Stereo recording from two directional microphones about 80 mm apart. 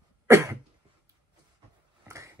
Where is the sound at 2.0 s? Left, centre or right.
Right.